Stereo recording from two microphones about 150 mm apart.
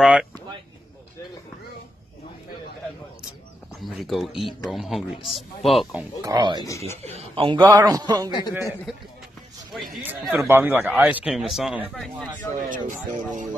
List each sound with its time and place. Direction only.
0.0 s speech: centre (ahead or behind)
3.8 s a man's voice: centre (ahead or behind)
6.2 s speech: 25° right (ahead or behind)
7.0 s a man's voice: 45° right (ahead or behind)
7.7 s speech: 25° right (ahead or behind)
8.3 s speech: 30° left (ahead or behind)
10.0 s a man's voice: 15° right (ahead or behind)
12.6 s speech: 60° right (ahead or behind)